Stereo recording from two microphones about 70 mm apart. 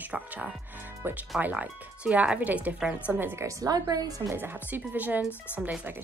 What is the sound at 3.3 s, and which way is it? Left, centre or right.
Speech, right.